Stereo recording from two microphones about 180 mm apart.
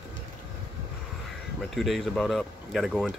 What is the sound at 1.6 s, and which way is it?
Speech, centre (ahead or behind).